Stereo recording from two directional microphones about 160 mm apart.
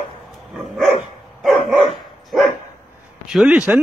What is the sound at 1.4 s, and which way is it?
Dog, centre (ahead or behind).